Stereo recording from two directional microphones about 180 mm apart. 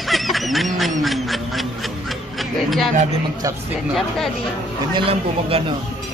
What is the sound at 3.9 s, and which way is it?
Speech, centre (ahead or behind).